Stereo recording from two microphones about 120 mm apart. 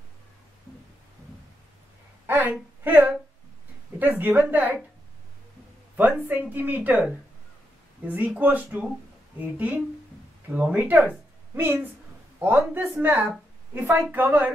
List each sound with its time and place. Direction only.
2.2 s a sound: 15° right (ahead or behind)
2.8 s speech: 15° right (ahead or behind)
5.9 s speech: 15° right (ahead or behind)